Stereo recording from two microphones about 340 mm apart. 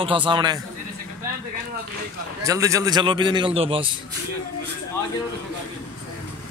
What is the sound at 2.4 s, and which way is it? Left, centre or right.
A man's voice, centre.